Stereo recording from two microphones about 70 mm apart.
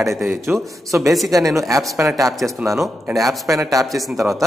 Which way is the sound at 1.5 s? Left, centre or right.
Right.